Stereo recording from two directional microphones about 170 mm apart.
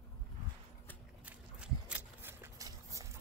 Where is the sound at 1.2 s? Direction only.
5° right (ahead or behind).